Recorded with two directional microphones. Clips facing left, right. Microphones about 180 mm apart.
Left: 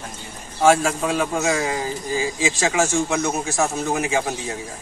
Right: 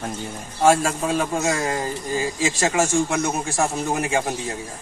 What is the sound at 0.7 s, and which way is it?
A man's voice, centre (ahead or behind).